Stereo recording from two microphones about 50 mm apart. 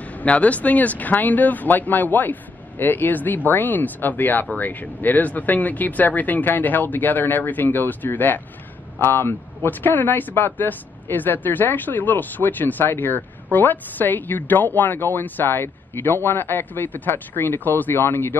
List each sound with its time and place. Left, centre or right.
0.0 s speech: left
9.0 s speech: left